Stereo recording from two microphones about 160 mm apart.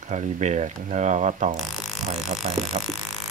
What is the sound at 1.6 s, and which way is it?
Didgeridoo, centre (ahead or behind).